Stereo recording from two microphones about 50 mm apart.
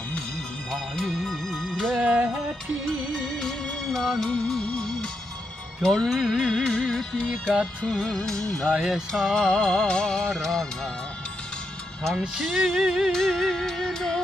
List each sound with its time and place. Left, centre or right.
0.7 s music: centre
2.2 s music: centre
3.3 s music: centre
4.6 s music: centre
5.8 s speech: centre
6.5 s music: centre
7.8 s speech: centre
8.7 s music: centre
9.1 s speech: centre
12.4 s speech: centre
13.9 s music: centre